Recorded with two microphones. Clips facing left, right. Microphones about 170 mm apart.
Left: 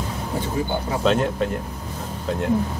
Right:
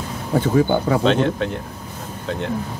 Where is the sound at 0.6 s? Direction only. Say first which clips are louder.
Right 9 dB; 75° right (ahead or behind).